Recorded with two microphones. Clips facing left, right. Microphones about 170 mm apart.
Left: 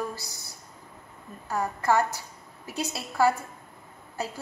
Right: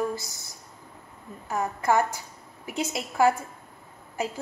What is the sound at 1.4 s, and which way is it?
A woman's voice, 20° right (ahead or behind).